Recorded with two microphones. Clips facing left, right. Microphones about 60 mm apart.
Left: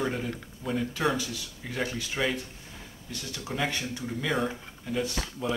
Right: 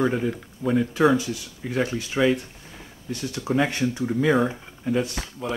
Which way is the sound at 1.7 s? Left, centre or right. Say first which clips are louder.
Right 7 dB; right.